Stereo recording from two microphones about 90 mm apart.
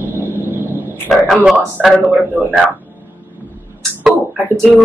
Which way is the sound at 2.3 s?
15° right (ahead or behind).